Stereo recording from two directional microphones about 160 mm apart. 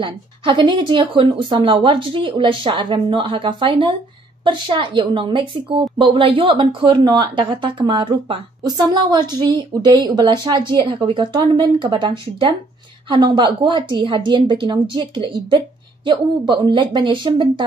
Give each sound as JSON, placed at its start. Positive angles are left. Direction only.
{"t": 0.0, "sound": "a woman's voice", "side_deg": -30}